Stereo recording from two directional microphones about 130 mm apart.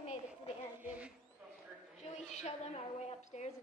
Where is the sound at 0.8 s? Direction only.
10° right (ahead or behind).